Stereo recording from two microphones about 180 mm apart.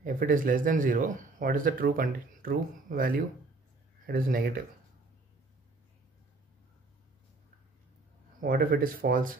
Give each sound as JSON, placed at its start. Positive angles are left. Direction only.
{"t": 0.0, "sound": "speech", "side_deg": -50}
{"t": 8.4, "sound": "speech", "side_deg": -55}